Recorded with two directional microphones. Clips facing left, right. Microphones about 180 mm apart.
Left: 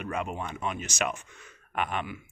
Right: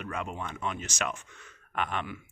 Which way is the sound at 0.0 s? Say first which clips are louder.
Left 3 dB; 15° left (ahead or behind).